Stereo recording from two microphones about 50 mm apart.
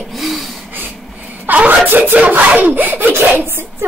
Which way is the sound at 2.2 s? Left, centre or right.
Right.